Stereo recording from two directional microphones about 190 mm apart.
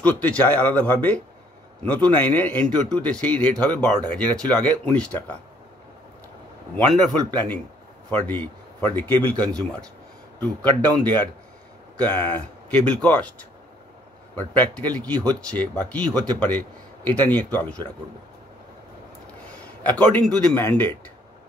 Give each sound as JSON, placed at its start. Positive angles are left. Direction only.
{"t": 0.0, "sound": "speech", "side_deg": 10}
{"t": 6.9, "sound": "speech", "side_deg": 0}
{"t": 11.0, "sound": "speech", "side_deg": 10}
{"t": 14.3, "sound": "speech", "side_deg": 10}
{"t": 19.8, "sound": "speech", "side_deg": 5}